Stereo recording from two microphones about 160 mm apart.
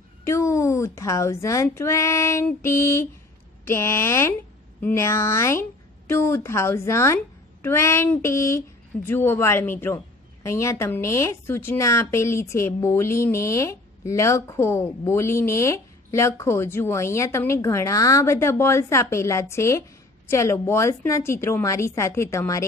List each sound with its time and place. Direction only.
0.3 s speech: 20° left (ahead or behind)